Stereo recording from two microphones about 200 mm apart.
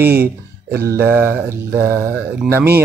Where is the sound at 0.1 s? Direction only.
50° right (ahead or behind).